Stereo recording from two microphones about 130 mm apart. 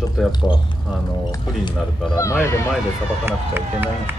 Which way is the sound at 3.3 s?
15° right (ahead or behind).